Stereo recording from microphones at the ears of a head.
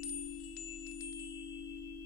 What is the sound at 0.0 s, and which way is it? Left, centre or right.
Chime, left.